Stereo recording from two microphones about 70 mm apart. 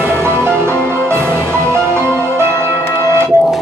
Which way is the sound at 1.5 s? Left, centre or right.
Right.